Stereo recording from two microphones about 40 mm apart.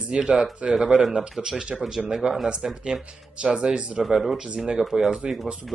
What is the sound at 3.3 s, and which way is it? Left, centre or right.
Speech, right.